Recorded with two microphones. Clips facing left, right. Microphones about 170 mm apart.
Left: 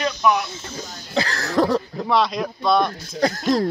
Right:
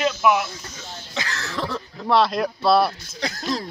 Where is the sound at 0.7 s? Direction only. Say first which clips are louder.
Left 8 dB; 35° left (ahead or behind).